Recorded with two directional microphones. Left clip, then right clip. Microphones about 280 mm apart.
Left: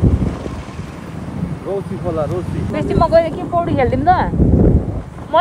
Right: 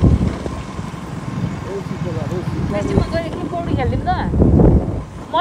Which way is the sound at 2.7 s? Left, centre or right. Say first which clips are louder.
Left 8 dB; centre.